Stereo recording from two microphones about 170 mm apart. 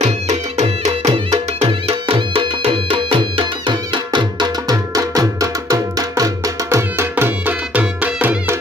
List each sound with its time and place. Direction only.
0.0 s music: 45° right (ahead or behind); by 8.5 s 10° right (ahead or behind)